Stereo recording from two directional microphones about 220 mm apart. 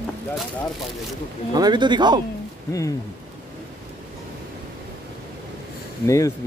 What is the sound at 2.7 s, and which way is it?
Speech, 15° left (ahead or behind).